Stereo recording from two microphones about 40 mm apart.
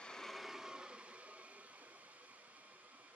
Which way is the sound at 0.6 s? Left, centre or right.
Right.